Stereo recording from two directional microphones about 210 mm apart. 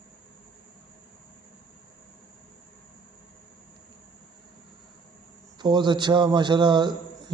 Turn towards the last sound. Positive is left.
turn(degrees=-20)  # may be behind; listen again after turning